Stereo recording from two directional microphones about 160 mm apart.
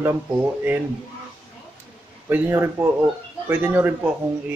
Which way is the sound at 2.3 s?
15° right (ahead or behind).